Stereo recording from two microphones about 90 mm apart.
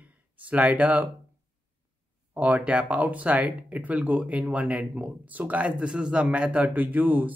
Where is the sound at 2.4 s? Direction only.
15° right (ahead or behind).